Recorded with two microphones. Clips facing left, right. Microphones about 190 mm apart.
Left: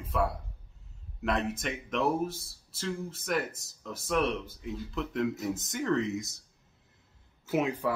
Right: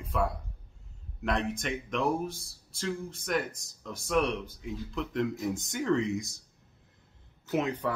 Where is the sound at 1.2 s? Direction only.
5° left (ahead or behind).